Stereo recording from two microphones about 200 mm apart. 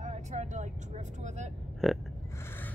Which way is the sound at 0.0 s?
35° right (ahead or behind).